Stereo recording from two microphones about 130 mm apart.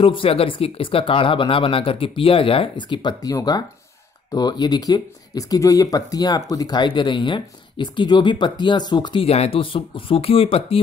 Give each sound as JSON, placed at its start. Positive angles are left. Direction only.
{"t": 0.0, "sound": "speech", "side_deg": 45}
{"t": 9.2, "sound": "speech", "side_deg": 50}